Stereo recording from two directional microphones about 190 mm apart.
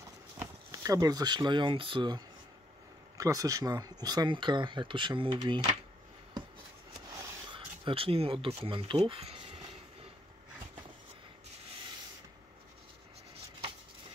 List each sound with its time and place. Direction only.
0.4 s speech: 15° right (ahead or behind)
7.4 s speech: 25° right (ahead or behind)